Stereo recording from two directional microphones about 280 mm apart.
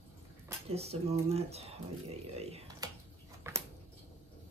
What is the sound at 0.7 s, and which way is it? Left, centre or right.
Speech, right.